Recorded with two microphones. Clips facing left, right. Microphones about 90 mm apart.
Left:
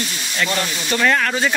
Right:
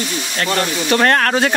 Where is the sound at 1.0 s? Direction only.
55° right (ahead or behind).